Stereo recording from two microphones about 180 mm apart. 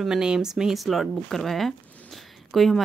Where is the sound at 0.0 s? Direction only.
5° right (ahead or behind).